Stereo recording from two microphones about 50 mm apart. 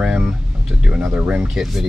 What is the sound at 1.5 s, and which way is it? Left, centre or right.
Speech, centre.